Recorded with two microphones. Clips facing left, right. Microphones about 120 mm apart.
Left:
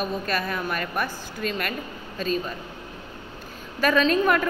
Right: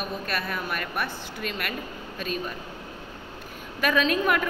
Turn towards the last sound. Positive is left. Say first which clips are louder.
# left 3 dB
turn(degrees=-5)  # may be behind; listen again after turning